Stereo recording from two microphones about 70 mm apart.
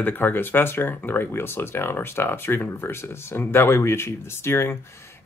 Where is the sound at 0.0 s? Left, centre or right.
Left.